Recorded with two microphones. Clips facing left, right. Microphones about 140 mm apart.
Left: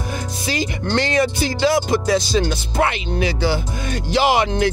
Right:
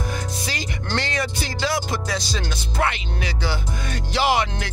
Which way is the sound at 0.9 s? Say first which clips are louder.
Left 7 dB; 20° left (ahead or behind).